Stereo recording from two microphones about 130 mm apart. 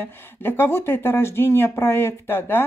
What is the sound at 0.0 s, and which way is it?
Speech, 15° left (ahead or behind).